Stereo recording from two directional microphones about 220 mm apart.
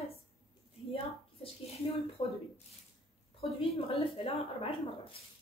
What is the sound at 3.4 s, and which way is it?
A woman's voice, 25° left (ahead or behind).